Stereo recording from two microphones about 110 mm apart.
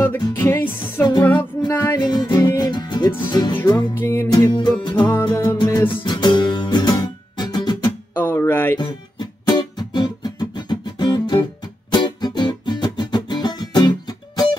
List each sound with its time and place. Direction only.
0.0 s music: 25° left (ahead or behind)
1.8 s music: 35° left (ahead or behind)
3.9 s music: 20° left (ahead or behind)
4.3 s music: 40° left (ahead or behind)
8.1 s music: 20° left (ahead or behind)
8.7 s music: 40° left (ahead or behind)